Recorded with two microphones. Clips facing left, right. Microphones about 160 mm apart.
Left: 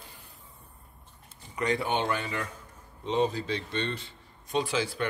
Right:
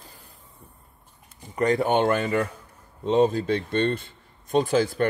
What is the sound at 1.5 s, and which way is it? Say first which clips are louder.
Speech: right 7 dB; 45° right (ahead or behind).